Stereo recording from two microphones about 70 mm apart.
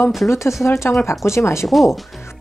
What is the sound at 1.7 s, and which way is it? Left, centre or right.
Speech, centre.